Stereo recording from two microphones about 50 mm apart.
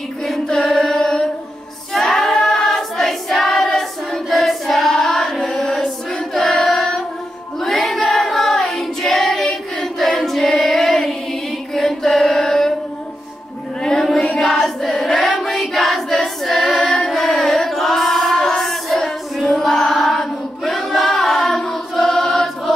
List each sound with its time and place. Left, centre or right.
0.6 s chant: centre
2.0 s female singing: centre
2.4 s choir: centre
5.5 s chant: centre
6.5 s child singing: centre
11.7 s chant: centre
13.8 s chant: centre
14.4 s child singing: centre
16.8 s carnatic music: centre
17.1 s female singing: centre